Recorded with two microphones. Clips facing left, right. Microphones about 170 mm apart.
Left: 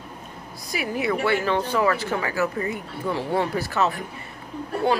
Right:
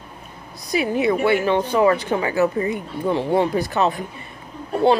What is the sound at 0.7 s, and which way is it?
A woman's voice, 20° right (ahead or behind).